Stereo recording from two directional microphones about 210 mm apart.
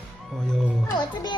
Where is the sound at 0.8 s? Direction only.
20° left (ahead or behind).